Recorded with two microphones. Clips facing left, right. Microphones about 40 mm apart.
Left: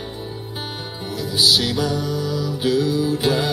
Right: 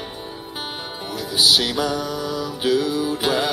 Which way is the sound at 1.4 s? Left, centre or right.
Centre.